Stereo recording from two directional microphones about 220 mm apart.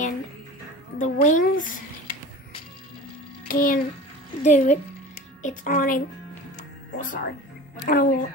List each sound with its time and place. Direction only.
0.9 s speech: 35° left (ahead or behind)
3.4 s a child's voice: 40° left (ahead or behind)